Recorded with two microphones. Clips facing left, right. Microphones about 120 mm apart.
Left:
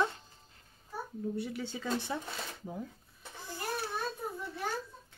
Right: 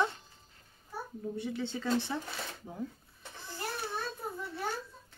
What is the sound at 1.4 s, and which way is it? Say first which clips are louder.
Speech: right 2 dB; 10° left (ahead or behind).